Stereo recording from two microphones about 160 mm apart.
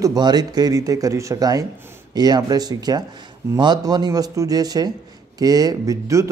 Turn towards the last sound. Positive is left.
turn(degrees=-20)  # may be behind; listen again after turning